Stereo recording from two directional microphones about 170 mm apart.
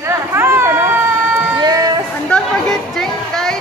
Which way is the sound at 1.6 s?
25° right (ahead or behind).